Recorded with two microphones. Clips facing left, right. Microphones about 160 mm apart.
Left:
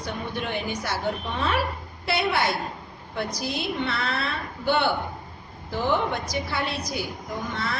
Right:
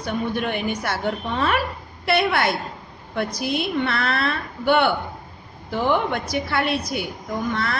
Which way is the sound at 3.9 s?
65° right (ahead or behind).